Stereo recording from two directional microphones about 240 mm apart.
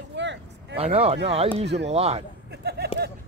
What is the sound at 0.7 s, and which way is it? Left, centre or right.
Speech, right.